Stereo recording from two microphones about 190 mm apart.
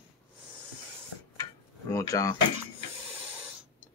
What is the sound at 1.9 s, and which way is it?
Speech, 15° left (ahead or behind).